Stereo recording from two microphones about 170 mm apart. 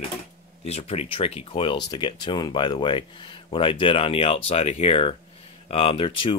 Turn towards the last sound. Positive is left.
turn(degrees=30)  # may be behind; listen again after turning